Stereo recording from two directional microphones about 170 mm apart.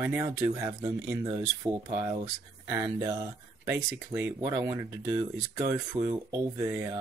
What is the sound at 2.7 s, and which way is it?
Speech, 20° right (ahead or behind).